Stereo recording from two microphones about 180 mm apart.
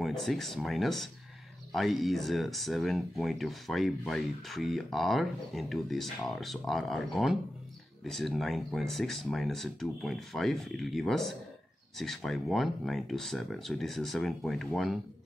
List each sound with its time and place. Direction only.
0.0 s speech: centre (ahead or behind)